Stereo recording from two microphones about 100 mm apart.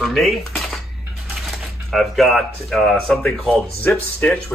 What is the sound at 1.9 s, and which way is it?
Speech, centre (ahead or behind).